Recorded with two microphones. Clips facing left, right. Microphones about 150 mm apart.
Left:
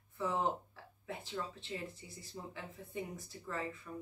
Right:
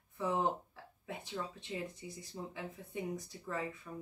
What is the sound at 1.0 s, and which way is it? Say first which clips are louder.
Speech: even; 15° right (ahead or behind).